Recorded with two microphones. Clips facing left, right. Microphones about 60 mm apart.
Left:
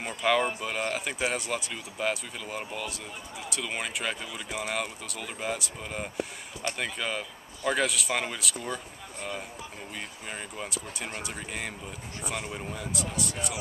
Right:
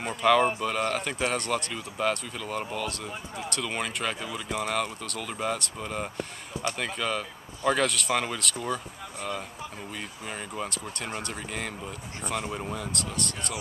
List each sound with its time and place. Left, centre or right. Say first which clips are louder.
0.0 s speech: right 4 dB; centre